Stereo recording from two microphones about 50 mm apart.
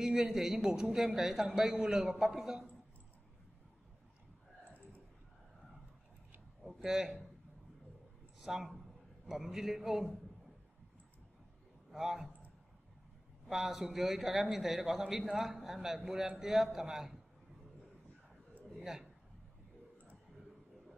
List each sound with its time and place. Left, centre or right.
0.0 s a man's voice: centre
4.6 s clicking: left
6.8 s a man's voice: centre
8.5 s a man's voice: centre
11.9 s a man's voice: centre
13.5 s a man's voice: centre